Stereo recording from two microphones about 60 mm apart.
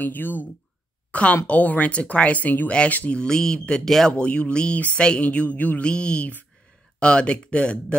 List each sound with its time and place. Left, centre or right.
0.0 s speech: left
1.1 s a woman's voice: left